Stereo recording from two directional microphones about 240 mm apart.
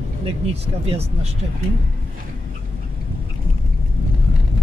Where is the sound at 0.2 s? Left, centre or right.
Right.